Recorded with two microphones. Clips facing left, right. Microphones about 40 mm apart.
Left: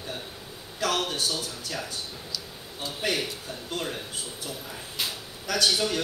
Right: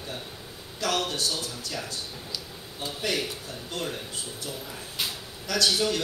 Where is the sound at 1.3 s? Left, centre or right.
Centre.